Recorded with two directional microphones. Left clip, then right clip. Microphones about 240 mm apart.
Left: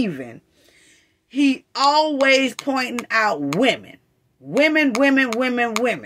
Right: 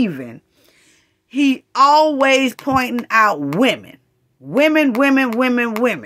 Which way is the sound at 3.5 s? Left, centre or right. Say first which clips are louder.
Right 2 dB; right.